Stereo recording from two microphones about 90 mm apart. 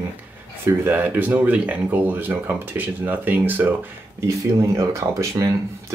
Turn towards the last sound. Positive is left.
turn(degrees=-30)  # may be behind; listen again after turning